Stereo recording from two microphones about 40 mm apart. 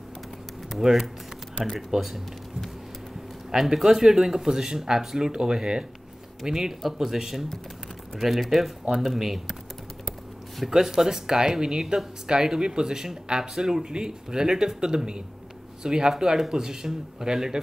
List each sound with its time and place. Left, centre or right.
0.8 s speech: centre
10.7 s speech: centre